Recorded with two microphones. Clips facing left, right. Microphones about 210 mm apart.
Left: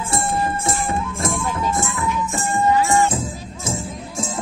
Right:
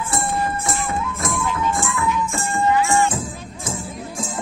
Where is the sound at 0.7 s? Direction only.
25° left (ahead or behind).